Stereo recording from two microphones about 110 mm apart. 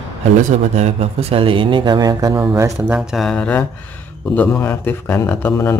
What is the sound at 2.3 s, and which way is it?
Speech, 25° right (ahead or behind).